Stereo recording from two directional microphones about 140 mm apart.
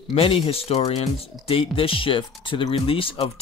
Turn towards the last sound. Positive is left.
turn(degrees=40)  # may be behind; listen again after turning